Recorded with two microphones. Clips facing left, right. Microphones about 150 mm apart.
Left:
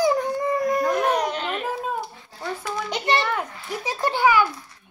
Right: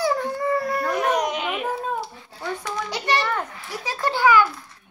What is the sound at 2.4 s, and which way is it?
Speech, 5° left (ahead or behind).